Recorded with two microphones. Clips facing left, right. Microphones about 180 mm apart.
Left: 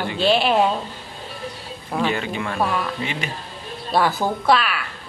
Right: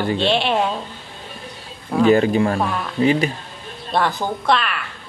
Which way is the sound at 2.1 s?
40° right (ahead or behind).